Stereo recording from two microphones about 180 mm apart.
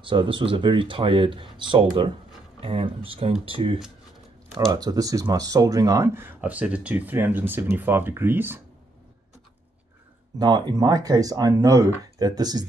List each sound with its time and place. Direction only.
0.0 s speech: 25° right (ahead or behind); by 8.5 s 10° right (ahead or behind)
10.4 s speech: 25° right (ahead or behind)